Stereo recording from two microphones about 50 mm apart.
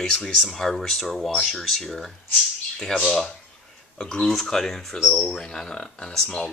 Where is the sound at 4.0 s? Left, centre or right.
Centre.